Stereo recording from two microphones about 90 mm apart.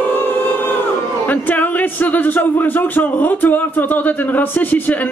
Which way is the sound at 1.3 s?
20° left (ahead or behind).